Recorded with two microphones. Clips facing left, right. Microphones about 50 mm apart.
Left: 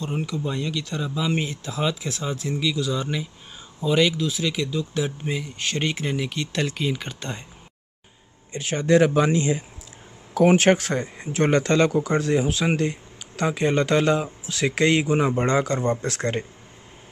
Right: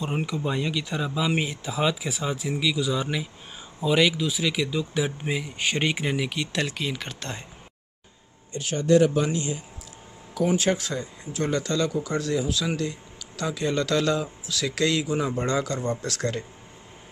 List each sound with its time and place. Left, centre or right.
0.0 s speech: centre
8.5 s speech: left
10.3 s speech: left